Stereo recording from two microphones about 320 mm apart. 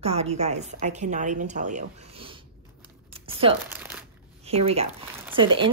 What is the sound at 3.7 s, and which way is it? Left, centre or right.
Crumpling, centre.